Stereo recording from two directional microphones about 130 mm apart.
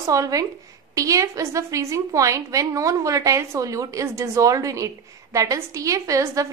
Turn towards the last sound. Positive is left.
turn(degrees=-25)  # may be behind; listen again after turning